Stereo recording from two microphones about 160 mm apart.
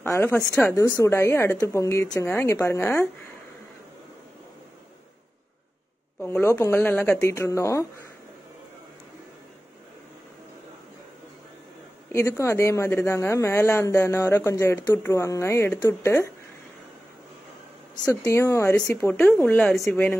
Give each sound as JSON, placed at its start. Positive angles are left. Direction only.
{"t": 0.0, "sound": "speech", "side_deg": 15}
{"t": 6.2, "sound": "speech", "side_deg": 15}
{"t": 12.1, "sound": "speech", "side_deg": 15}
{"t": 18.2, "sound": "speech", "side_deg": 15}